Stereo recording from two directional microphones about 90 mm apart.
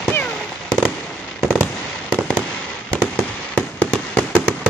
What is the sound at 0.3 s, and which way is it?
Fireworks, 10° left (ahead or behind).